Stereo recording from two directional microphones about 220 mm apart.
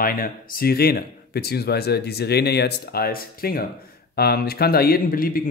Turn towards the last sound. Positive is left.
turn(degrees=40)  # may be behind; listen again after turning